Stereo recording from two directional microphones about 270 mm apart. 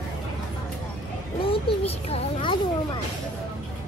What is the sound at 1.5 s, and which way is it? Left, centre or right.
Speech, left.